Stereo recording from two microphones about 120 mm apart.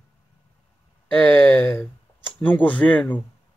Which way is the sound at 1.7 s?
15° left (ahead or behind).